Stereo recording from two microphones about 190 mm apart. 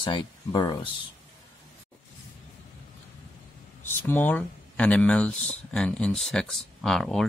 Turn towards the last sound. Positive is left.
turn(degrees=0)  # may be behind; listen again after turning